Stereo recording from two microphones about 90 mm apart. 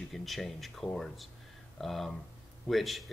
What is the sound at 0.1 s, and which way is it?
Speech, centre (ahead or behind).